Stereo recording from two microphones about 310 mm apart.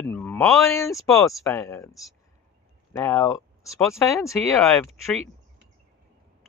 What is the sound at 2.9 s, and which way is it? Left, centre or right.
Speech, centre.